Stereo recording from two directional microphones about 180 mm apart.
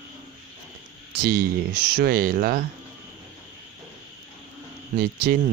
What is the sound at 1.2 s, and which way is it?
Speech, 55° right (ahead or behind).